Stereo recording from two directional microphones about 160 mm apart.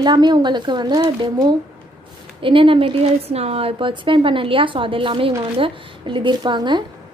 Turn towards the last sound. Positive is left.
turn(degrees=-30)  # may be behind; listen again after turning